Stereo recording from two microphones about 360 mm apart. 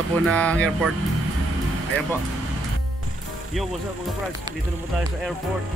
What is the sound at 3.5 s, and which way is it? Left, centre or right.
Speech, centre.